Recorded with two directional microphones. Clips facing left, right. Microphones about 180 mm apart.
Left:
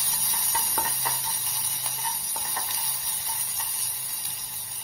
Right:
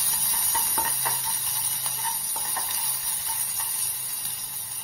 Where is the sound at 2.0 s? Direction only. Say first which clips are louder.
Right 1 dB; 15° left (ahead or behind).